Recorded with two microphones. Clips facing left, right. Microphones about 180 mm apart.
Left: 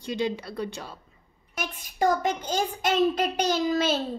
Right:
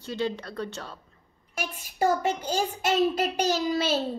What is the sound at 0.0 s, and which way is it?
Speech, 15° left (ahead or behind).